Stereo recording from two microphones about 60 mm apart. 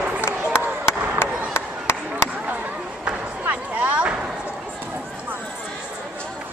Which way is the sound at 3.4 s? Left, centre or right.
Right.